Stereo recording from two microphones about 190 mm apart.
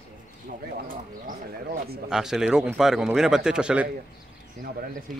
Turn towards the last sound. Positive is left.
turn(degrees=-5)  # may be behind; listen again after turning